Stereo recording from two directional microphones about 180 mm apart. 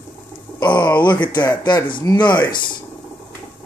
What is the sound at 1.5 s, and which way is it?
Speech, 25° left (ahead or behind).